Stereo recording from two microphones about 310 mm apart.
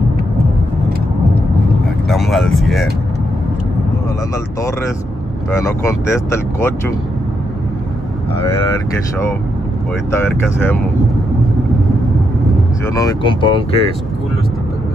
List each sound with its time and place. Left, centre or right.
2.0 s vehicle: centre
5.6 s speech: centre
10.1 s speech: centre
12.8 s speech: centre